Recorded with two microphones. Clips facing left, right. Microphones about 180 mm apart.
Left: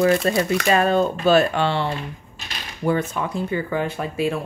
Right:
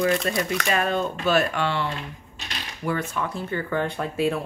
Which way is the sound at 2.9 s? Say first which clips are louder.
Left 5 dB; 20° left (ahead or behind).